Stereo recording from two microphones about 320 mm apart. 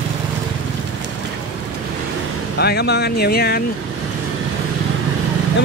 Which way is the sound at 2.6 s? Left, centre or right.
Left.